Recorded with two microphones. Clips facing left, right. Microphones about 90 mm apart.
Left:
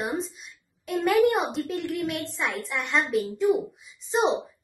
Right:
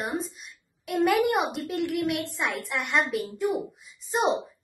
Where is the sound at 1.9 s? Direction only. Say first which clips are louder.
Right 2 dB; 65° right (ahead or behind).